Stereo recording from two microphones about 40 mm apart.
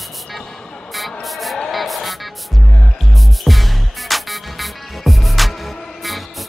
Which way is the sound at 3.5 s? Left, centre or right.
Centre.